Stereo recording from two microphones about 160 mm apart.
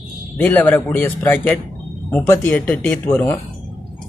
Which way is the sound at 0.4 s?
10° left (ahead or behind).